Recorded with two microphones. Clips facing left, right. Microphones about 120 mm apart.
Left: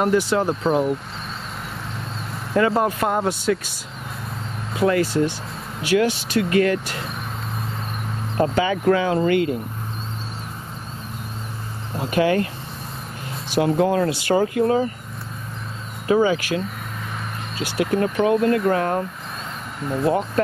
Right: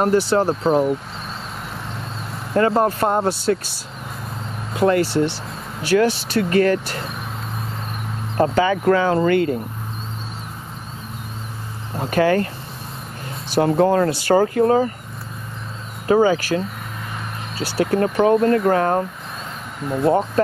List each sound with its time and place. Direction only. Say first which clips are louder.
0.0 s speech: right 2 dB; 35° right (ahead or behind)
2.8 s speech: right 3 dB; 35° right (ahead or behind)
4.8 s speech: right 2 dB; 40° right (ahead or behind)
8.4 s speech: right 3 dB; 40° right (ahead or behind)
12.0 s speech: right 2 dB; 40° right (ahead or behind)
13.6 s speech: right 3 dB; 35° right (ahead or behind)
16.1 s speech: right 2 dB; 35° right (ahead or behind)
19.8 s speech: right 2 dB; centre (ahead or behind)
20.1 s speech: right 3 dB; 30° right (ahead or behind)